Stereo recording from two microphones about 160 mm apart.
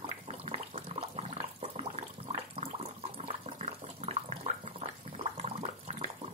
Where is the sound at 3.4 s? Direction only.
45° right (ahead or behind).